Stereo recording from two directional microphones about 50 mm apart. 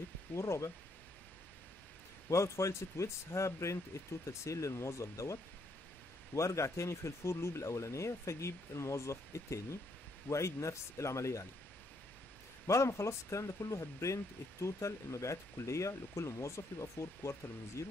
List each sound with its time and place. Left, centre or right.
0.3 s speech: left
2.2 s speech: left
4.3 s speech: left
12.6 s speech: left